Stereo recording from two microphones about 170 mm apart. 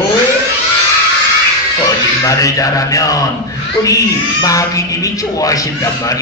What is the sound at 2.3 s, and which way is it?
Speech, 20° left (ahead or behind).